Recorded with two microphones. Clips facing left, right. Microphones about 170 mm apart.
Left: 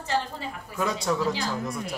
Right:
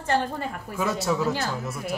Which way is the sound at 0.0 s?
55° right (ahead or behind).